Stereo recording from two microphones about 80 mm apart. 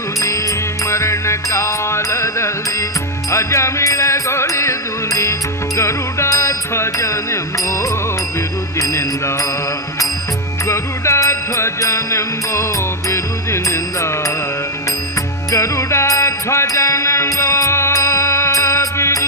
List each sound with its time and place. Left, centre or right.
0.8 s music: left
10.7 s music: left
15.5 s music: left